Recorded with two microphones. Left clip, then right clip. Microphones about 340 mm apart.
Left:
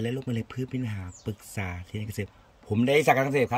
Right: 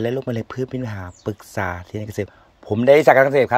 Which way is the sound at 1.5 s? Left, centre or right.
Right.